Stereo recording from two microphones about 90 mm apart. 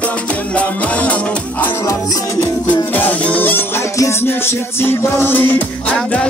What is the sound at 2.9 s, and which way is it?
Music, 20° left (ahead or behind).